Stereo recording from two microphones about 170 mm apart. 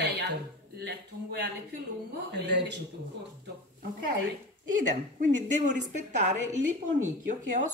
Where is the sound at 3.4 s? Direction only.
60° right (ahead or behind).